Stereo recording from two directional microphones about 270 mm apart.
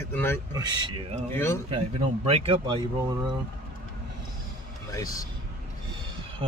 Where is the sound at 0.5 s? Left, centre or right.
Centre.